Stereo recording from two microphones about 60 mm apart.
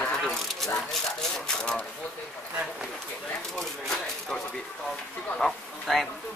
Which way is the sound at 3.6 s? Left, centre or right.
Centre.